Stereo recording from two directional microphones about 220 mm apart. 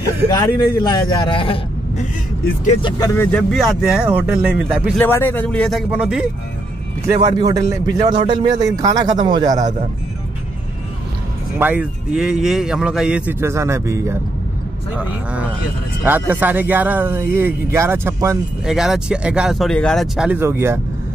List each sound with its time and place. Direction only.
0.3 s speech: 20° left (ahead or behind)
2.8 s a man's voice: 15° left (ahead or behind); by 5.0 s 5° right (ahead or behind)
5.0 s a man's voice: 10° left (ahead or behind)
7.2 s speech: 15° right (ahead or behind)
11.5 s a man's voice: 10° right (ahead or behind)